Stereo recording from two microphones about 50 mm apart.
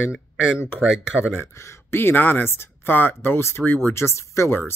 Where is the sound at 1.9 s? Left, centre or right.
Left.